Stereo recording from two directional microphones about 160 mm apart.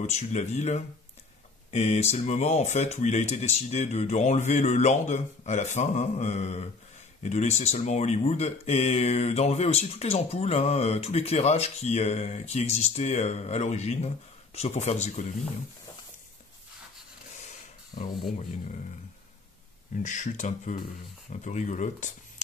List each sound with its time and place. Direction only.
0.0 s speech: 45° left (ahead or behind)
17.9 s speech: 80° left
20.0 s speech: 50° left (ahead or behind)